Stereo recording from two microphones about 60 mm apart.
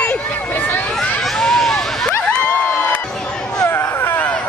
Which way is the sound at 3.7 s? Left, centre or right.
Left.